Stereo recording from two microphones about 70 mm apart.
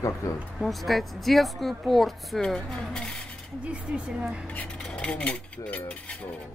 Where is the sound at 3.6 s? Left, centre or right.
Centre.